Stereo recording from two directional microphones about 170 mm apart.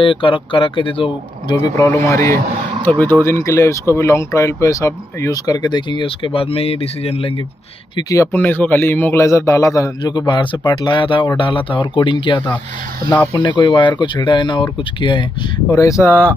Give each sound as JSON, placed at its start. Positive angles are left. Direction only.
{"t": 0.0, "sound": "a man's voice", "side_deg": 30}
{"t": 8.1, "sound": "a man's voice", "side_deg": 15}